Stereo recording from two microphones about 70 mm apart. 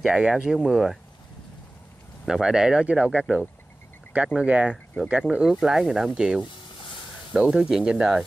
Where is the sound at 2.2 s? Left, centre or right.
Centre.